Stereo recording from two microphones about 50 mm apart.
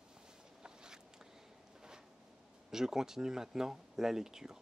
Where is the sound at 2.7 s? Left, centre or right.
Centre.